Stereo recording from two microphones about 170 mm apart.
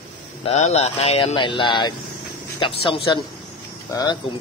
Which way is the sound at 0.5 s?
40° left (ahead or behind).